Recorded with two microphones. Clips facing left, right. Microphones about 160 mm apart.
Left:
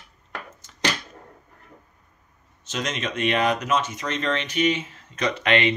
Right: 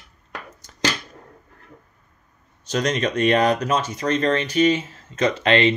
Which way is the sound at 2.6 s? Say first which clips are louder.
Right 7 dB; 35° right (ahead or behind).